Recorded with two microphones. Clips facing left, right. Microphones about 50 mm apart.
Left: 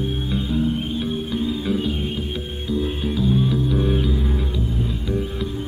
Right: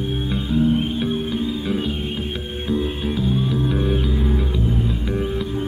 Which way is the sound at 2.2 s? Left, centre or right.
Right.